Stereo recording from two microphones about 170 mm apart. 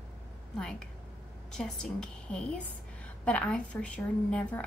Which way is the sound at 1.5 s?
5° left (ahead or behind).